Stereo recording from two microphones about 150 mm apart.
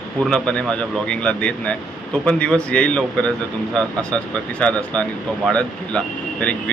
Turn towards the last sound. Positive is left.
turn(degrees=10)  # may be behind; listen again after turning